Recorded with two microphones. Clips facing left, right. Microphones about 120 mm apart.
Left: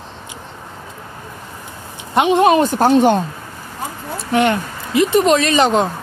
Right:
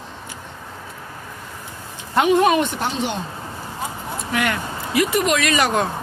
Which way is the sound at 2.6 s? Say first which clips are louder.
Left 10 dB; 40° left (ahead or behind).